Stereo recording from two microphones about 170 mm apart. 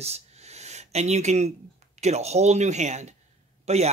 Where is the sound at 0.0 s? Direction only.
40° right (ahead or behind).